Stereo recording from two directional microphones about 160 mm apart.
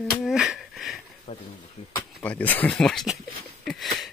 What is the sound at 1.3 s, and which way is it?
Speech, 40° left (ahead or behind).